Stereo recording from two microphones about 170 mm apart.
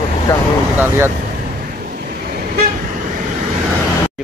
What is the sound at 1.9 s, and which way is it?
Waves, 60° right (ahead or behind).